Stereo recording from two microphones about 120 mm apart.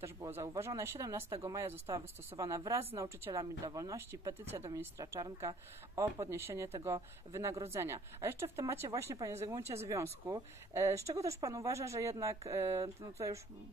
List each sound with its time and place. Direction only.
0.0 s speech: 20° right (ahead or behind)